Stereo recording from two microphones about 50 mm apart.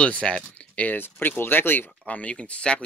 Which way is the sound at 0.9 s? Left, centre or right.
Left.